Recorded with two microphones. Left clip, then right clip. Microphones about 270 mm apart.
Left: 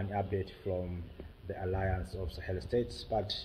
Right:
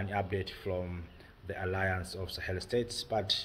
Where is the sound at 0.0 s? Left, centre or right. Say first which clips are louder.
Right 1 dB; centre.